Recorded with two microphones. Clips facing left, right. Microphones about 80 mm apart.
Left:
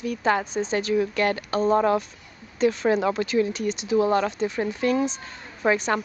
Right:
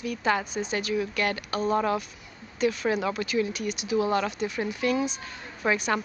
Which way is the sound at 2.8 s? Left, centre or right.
Left.